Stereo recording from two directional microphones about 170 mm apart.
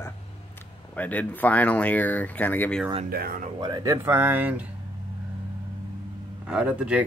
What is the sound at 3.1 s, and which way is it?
Speech, 60° right (ahead or behind).